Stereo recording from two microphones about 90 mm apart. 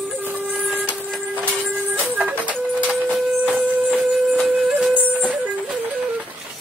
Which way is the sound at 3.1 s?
15° right (ahead or behind).